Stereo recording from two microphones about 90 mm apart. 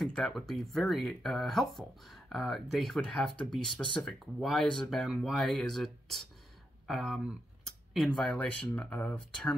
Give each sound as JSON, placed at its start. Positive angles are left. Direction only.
{"t": 0.0, "sound": "speech", "side_deg": 0}
{"t": 7.2, "sound": "a sound", "side_deg": 0}
{"t": 8.4, "sound": "speech", "side_deg": 15}